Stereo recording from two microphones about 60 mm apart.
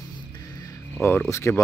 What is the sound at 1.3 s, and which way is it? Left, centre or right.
Speech, left.